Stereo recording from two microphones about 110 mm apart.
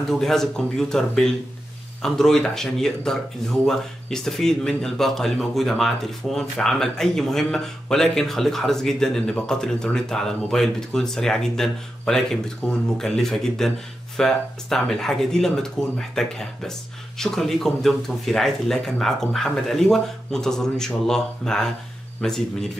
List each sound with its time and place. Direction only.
0.1 s speech: 5° left (ahead or behind)